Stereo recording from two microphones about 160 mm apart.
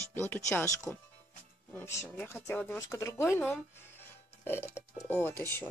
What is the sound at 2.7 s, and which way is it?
Speech, 20° left (ahead or behind).